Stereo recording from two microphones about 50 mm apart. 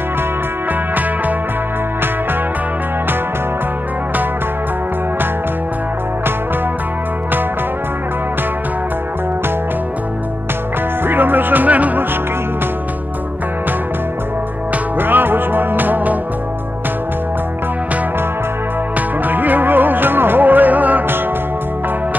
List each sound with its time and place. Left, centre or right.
11.1 s music: right
15.0 s music: right
18.9 s music: right